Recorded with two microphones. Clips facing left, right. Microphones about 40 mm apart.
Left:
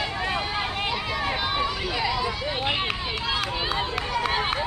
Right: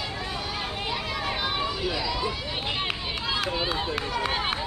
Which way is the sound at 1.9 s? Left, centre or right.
Left.